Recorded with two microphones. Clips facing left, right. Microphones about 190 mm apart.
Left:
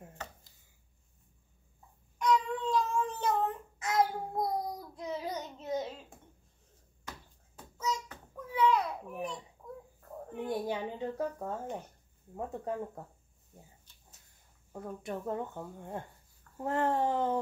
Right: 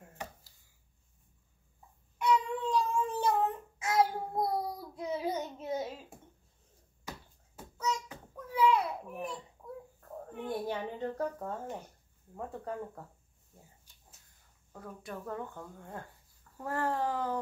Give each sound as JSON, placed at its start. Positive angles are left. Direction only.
{"t": 0.2, "sound": "chopping", "side_deg": -15}
{"t": 2.1, "sound": "child singing", "side_deg": -5}
{"t": 7.1, "sound": "bouncing", "side_deg": -5}
{"t": 8.1, "sound": "child singing", "side_deg": -5}
{"t": 9.1, "sound": "a sound", "side_deg": 0}
{"t": 10.4, "sound": "a child's voice", "side_deg": 15}
{"t": 12.4, "sound": "speech", "side_deg": 25}
{"t": 13.9, "sound": "a sound", "side_deg": -10}
{"t": 14.7, "sound": "speech", "side_deg": 25}